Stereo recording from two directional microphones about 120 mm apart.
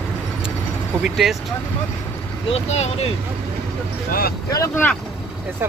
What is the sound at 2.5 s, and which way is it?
Speech, 60° left (ahead or behind).